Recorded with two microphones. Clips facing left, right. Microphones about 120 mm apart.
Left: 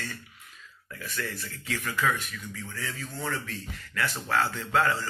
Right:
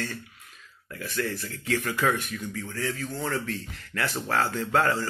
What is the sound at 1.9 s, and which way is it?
Speech, 50° right (ahead or behind).